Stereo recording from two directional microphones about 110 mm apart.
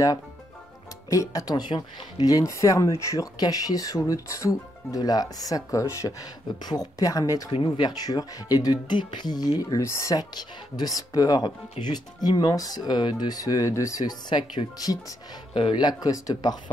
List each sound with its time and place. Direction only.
1.1 s speech: 30° left (ahead or behind)
7.5 s speech: 50° left (ahead or behind); by 16.7 s 35° left (ahead or behind)